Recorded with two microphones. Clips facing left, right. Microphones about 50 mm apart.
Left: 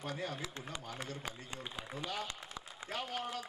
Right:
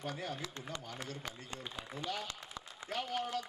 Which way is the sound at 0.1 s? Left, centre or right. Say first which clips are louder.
Left 1 dB; left.